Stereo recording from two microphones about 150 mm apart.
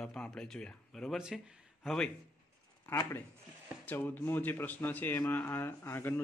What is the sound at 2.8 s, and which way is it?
Speech, 15° left (ahead or behind).